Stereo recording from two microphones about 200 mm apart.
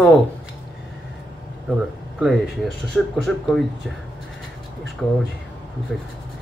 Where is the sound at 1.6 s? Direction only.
5° right (ahead or behind).